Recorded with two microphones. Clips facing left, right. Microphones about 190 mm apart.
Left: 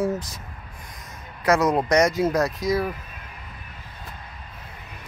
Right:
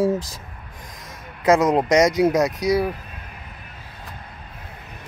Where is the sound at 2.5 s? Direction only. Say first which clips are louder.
Right 3 dB; 75° right (ahead or behind).